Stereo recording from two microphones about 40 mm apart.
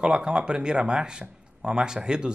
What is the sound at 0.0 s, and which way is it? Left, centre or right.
A man's voice, right.